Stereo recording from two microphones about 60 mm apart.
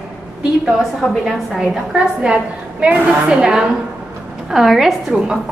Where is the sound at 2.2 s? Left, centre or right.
Centre.